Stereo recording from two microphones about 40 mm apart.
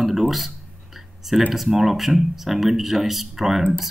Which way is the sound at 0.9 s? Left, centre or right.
Centre.